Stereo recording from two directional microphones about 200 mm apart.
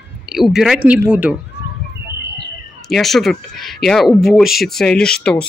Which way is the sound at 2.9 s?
Centre (ahead or behind).